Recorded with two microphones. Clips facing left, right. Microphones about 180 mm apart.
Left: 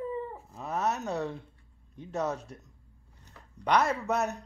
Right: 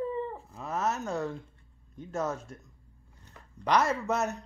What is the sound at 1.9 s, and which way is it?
Speech, 35° left (ahead or behind).